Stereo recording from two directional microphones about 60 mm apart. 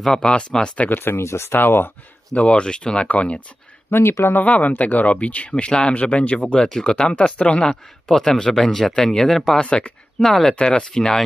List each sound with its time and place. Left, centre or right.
0.0 s speech: centre
0.8 s speech: left
2.3 s speech: centre
9.7 s speech: centre
10.2 s speech: centre